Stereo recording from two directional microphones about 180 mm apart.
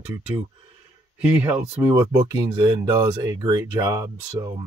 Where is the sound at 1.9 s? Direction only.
15° right (ahead or behind).